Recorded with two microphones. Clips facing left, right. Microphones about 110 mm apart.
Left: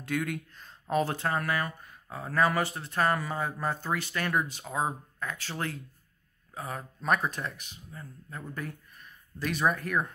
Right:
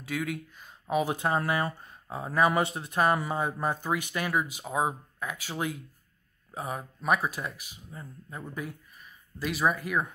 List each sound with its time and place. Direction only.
0.0 s speech: centre (ahead or behind)